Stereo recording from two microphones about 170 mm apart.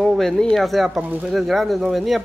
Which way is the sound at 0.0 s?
Centre (ahead or behind).